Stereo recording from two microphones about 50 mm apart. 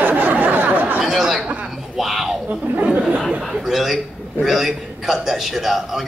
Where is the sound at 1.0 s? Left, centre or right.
Centre.